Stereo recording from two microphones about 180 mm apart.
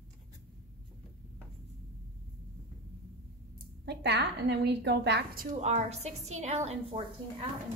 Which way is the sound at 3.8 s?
70° right (ahead or behind).